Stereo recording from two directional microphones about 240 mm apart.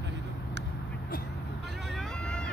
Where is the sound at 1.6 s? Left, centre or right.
Centre.